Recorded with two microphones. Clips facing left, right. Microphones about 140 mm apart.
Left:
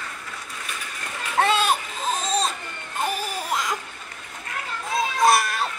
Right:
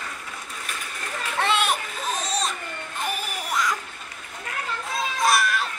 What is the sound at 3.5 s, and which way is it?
Laughter, 25° left (ahead or behind).